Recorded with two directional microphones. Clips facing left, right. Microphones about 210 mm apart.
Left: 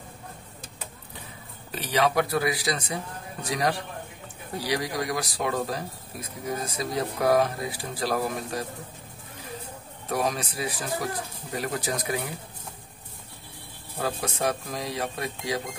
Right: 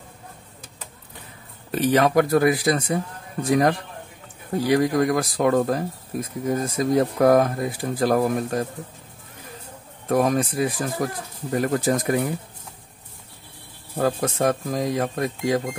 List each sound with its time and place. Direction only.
1.7 s speech: 50° right (ahead or behind)
10.0 s speech: 50° right (ahead or behind)
13.9 s speech: 50° right (ahead or behind)